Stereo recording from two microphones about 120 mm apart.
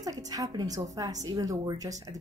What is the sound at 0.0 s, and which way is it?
A woman's voice, 30° right (ahead or behind).